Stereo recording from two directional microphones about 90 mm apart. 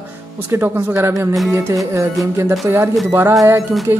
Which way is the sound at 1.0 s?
30° right (ahead or behind).